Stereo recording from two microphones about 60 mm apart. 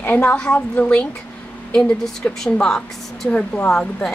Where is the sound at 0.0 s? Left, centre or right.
Left; by 3.3 s centre.